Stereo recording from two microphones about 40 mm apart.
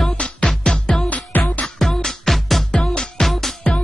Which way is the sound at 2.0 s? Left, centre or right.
Centre.